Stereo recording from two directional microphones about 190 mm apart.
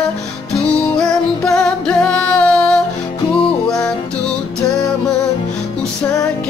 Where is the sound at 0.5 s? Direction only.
5° left (ahead or behind).